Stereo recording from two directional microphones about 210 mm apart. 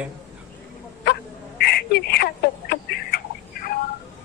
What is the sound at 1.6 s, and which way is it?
Telephone, 50° left (ahead or behind).